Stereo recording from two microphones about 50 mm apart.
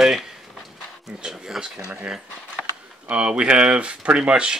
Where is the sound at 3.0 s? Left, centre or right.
Right.